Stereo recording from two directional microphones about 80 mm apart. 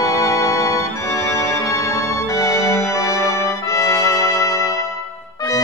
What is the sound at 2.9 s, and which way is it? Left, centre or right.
Music, left.